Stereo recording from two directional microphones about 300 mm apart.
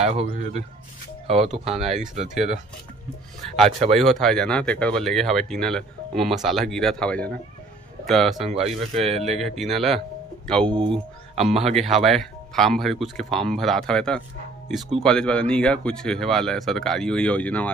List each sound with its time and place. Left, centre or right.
0.0 s speech: right
3.9 s speech: centre
8.5 s speech: centre
9.4 s speech: centre